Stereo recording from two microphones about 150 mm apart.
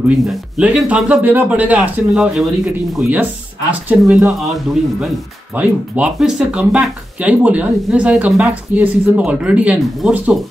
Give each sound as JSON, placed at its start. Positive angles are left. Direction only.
{"t": 0.2, "sound": "speech", "side_deg": -5}
{"t": 5.6, "sound": "speech", "side_deg": -10}